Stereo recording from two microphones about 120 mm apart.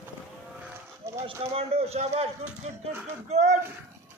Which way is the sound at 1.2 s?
55° right (ahead or behind).